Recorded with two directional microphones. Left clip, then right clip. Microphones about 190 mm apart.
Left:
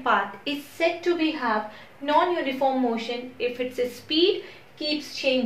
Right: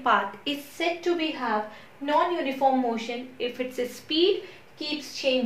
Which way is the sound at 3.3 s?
20° right (ahead or behind).